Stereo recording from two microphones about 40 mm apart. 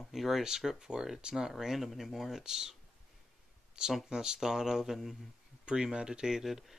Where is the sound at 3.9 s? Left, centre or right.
Centre.